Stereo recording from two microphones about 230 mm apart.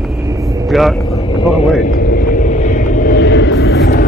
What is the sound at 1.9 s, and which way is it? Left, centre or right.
Vehicle, left.